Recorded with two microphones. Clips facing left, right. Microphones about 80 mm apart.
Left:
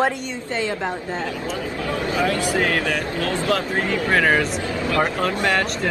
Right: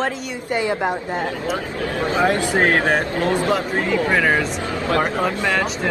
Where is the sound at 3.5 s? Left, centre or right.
Right.